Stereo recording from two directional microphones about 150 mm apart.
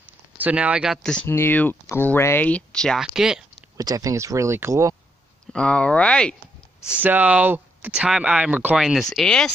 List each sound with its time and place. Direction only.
0.4 s speech: 10° right (ahead or behind)
3.7 s speech: 20° right (ahead or behind)
5.5 s speech: 5° left (ahead or behind)
7.0 s speech: 10° right (ahead or behind); by 9.5 s 5° left (ahead or behind)